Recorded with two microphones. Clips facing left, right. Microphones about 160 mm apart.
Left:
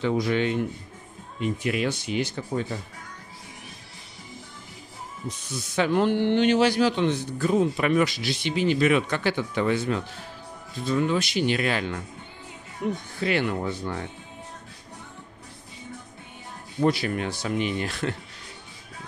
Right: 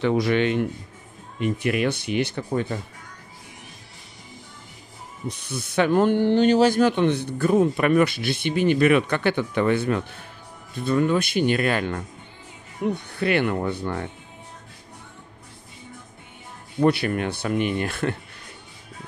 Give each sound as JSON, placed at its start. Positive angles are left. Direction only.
{"t": 0.0, "sound": "speech", "side_deg": -70}
{"t": 1.4, "sound": "a man's voice", "side_deg": -60}
{"t": 5.5, "sound": "a man's voice", "side_deg": -60}
{"t": 12.9, "sound": "a man's voice", "side_deg": -65}
{"t": 16.8, "sound": "a man's voice", "side_deg": -60}